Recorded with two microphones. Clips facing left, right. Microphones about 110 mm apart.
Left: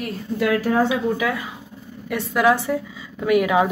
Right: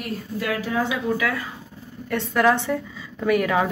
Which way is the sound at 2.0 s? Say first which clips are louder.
Left 1 dB; 5° left (ahead or behind).